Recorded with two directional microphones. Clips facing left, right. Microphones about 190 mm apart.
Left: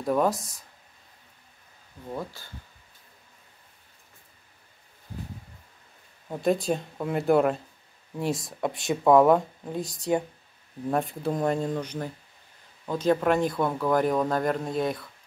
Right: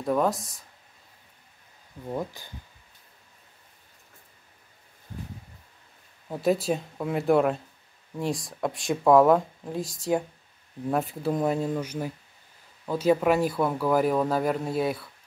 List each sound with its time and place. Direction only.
0.0 s speech: centre (ahead or behind)
2.1 s speech: 15° right (ahead or behind)
6.2 s speech: 5° right (ahead or behind)